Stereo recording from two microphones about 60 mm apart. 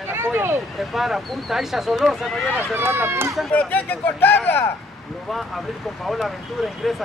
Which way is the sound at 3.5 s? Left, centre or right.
Left.